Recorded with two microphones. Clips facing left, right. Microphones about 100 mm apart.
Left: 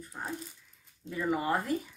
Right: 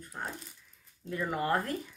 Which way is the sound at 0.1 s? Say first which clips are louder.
Right 1 dB; 5° left (ahead or behind).